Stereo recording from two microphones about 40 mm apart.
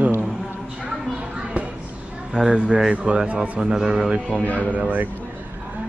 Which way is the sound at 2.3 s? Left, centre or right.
Centre.